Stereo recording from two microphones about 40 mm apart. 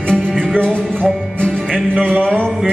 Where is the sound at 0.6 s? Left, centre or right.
Left.